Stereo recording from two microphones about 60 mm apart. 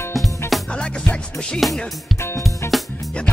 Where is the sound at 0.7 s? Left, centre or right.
Centre.